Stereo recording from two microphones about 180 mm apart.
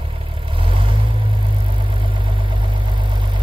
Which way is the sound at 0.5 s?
30° right (ahead or behind).